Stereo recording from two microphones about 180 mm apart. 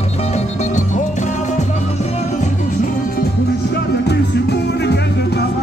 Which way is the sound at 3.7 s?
65° left (ahead or behind).